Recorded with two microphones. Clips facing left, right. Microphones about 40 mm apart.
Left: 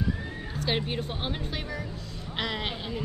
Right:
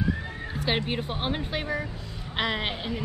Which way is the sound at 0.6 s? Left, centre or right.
Centre.